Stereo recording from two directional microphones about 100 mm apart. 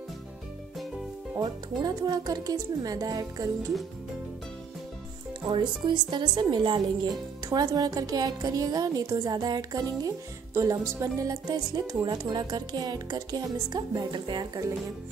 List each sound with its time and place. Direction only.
1.4 s a woman's voice: 45° right (ahead or behind)
5.5 s a woman's voice: 50° right (ahead or behind)
7.4 s a woman's voice: 40° right (ahead or behind)